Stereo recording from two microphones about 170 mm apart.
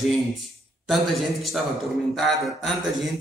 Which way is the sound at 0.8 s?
Centre (ahead or behind).